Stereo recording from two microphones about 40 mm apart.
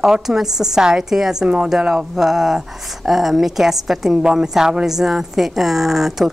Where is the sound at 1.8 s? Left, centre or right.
Centre.